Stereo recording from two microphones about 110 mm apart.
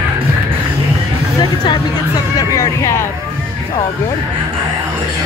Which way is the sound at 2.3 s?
30° left (ahead or behind).